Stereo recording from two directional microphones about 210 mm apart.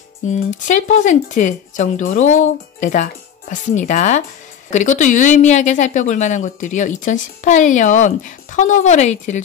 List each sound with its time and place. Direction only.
0.3 s speech: 35° left (ahead or behind)